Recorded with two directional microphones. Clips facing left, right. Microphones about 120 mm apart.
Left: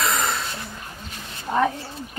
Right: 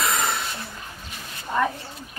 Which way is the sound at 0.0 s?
Centre (ahead or behind).